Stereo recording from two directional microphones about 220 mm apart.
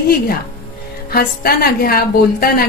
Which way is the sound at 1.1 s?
45° left (ahead or behind).